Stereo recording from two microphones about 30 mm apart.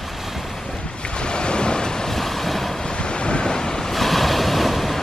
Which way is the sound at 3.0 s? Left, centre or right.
Left.